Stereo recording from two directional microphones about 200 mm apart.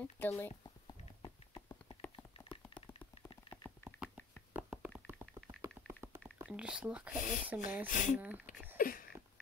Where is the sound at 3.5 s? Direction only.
10° left (ahead or behind).